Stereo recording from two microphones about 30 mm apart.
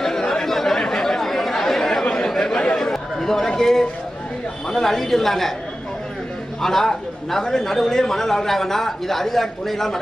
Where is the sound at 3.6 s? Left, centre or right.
Centre.